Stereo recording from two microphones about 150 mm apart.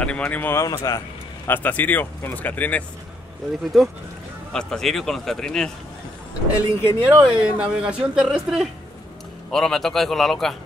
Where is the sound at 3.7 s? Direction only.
Centre (ahead or behind).